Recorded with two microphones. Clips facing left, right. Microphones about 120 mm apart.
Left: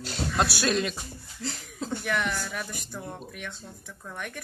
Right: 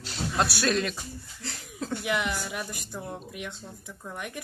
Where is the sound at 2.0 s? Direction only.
5° right (ahead or behind).